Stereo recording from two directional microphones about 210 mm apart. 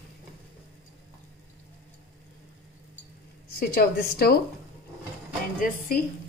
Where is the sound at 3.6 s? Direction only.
45° left (ahead or behind).